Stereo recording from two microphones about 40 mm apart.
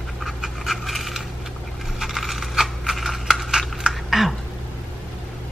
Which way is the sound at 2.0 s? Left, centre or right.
Centre.